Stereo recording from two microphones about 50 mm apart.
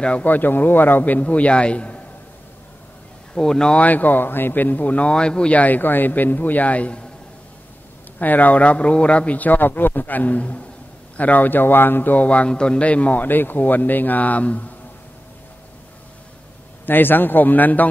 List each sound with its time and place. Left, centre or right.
0.2 s speech: left
3.3 s speech: centre
3.8 s speech: left
5.1 s speech: centre
5.6 s speech: left
8.2 s speech: left
16.8 s speech: left